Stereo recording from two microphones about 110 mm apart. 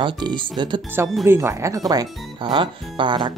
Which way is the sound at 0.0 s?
45° right (ahead or behind).